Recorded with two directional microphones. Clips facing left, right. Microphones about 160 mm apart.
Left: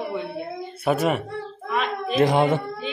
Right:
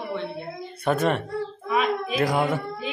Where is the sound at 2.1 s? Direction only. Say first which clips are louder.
Left 6 dB; 25° left (ahead or behind).